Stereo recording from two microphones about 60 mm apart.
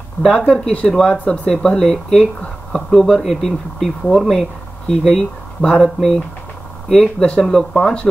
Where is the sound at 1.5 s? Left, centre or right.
Centre.